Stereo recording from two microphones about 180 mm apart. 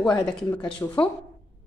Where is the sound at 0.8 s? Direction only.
15° left (ahead or behind).